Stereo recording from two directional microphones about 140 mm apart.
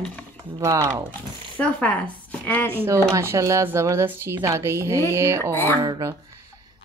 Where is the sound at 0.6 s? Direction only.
25° right (ahead or behind).